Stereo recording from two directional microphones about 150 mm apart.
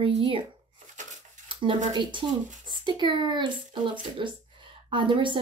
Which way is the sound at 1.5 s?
35° right (ahead or behind).